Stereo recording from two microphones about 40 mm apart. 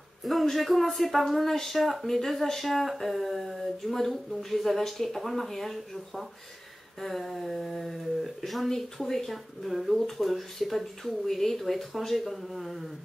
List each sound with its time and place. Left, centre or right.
0.2 s speech: centre